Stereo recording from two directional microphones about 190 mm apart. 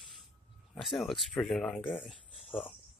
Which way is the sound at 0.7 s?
Centre (ahead or behind).